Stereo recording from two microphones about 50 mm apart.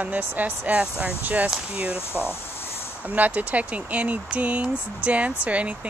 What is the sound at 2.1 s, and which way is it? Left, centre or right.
Speech, left.